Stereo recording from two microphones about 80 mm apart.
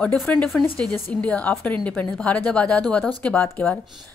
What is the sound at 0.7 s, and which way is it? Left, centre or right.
A woman's voice, centre.